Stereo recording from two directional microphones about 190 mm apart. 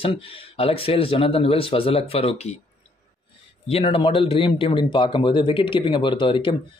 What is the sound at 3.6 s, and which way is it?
Speech, 30° left (ahead or behind).